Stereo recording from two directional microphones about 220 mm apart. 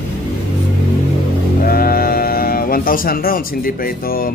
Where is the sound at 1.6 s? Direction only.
45° left (ahead or behind).